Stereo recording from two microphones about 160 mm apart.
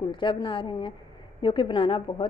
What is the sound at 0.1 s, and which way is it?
A woman's voice, 30° left (ahead or behind).